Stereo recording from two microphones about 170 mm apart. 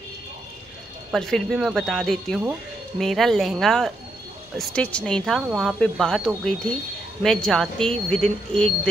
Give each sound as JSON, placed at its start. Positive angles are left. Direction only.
{"t": 1.1, "sound": "speech", "side_deg": 0}